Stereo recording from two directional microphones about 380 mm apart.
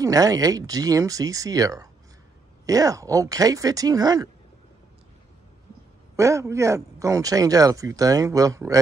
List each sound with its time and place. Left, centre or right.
0.0 s speech: centre
6.1 s speech: centre